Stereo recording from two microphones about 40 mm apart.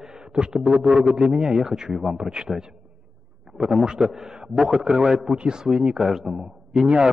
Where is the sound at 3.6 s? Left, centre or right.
Centre.